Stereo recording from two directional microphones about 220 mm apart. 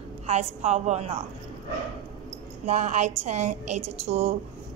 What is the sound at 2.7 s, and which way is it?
A woman's voice, 30° right (ahead or behind).